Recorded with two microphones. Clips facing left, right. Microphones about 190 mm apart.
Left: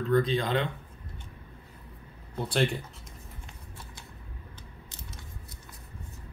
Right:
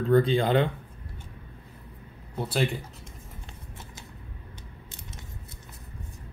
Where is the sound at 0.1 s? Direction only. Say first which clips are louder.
Right 4 dB; 30° right (ahead or behind).